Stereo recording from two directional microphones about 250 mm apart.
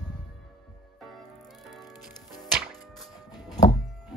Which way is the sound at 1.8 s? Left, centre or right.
Centre.